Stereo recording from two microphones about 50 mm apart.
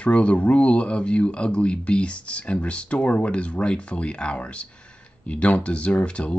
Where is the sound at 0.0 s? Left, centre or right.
Left.